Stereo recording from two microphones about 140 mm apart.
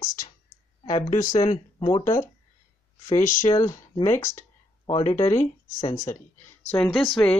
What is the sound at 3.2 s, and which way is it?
Speech, 65° left (ahead or behind).